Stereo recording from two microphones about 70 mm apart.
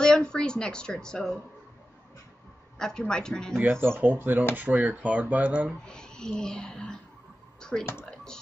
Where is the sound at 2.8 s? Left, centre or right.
Centre.